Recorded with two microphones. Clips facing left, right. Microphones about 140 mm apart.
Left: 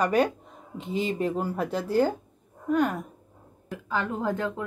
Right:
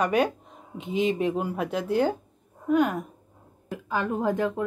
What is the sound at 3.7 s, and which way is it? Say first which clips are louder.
Speech: right 2 dB; 15° right (ahead or behind).